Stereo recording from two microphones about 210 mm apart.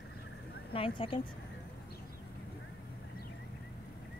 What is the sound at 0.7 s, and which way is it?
Speech, 25° left (ahead or behind).